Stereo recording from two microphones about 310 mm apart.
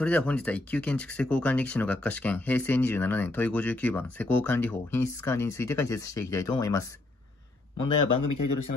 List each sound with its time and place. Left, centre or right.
0.0 s speech: centre
7.8 s speech: left